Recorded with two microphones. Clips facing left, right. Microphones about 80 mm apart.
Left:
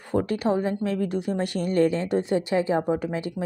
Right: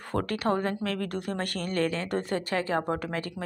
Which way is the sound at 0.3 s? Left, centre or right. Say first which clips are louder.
Left 1 dB; right.